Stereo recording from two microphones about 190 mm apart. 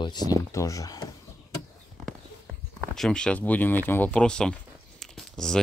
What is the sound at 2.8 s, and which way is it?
Speech, 5° left (ahead or behind).